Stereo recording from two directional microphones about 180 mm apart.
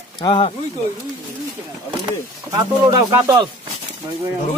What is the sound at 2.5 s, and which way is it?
Speech, 25° right (ahead or behind).